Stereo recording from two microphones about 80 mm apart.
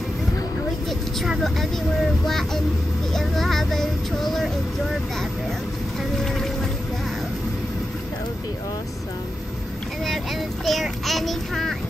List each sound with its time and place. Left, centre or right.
1.2 s speech: centre
3.2 s vehicle: centre
10.0 s a child's voice: centre